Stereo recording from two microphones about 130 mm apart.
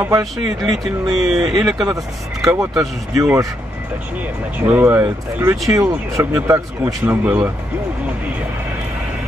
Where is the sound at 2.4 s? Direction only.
25° right (ahead or behind).